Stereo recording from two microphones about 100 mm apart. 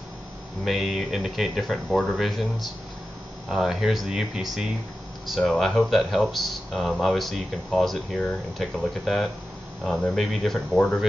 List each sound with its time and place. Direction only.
0.7 s speech: 5° right (ahead or behind)